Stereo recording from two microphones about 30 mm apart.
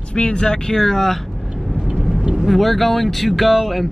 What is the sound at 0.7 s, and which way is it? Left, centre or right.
Speech, centre.